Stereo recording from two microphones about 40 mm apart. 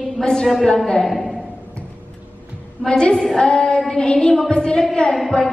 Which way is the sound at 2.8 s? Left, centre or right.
Left.